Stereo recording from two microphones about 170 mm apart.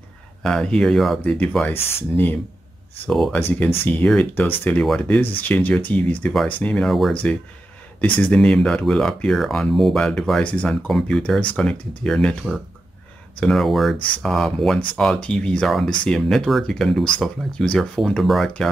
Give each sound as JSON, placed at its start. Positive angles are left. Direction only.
{"t": 0.4, "sound": "speech", "side_deg": 5}
{"t": 3.1, "sound": "speech", "side_deg": 0}
{"t": 13.9, "sound": "speech", "side_deg": 30}
{"t": 14.2, "sound": "speech", "side_deg": 5}